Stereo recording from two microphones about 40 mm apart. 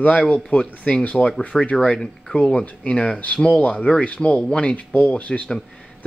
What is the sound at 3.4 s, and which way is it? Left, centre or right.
Speech, left.